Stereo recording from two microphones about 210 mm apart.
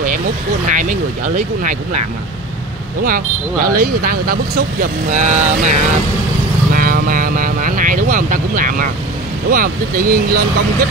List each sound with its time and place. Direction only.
0.7 s speech: 35° right (ahead or behind)
3.6 s speech: 45° right (ahead or behind)
5.1 s speech: 35° right (ahead or behind)